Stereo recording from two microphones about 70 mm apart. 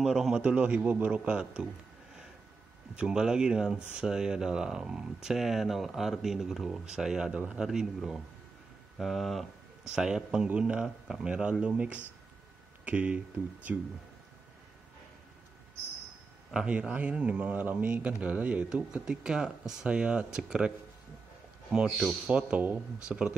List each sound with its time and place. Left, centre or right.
0.0 s a man's voice: centre
0.4 s speech: right
3.0 s speech: centre
16.5 s speech: centre
21.7 s speech: centre
22.3 s speech: centre